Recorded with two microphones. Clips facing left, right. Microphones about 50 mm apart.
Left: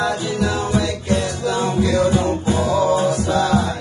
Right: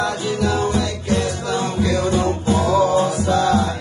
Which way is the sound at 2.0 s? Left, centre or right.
Centre.